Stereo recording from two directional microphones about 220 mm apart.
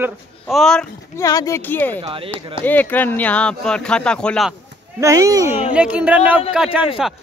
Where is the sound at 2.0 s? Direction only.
25° right (ahead or behind).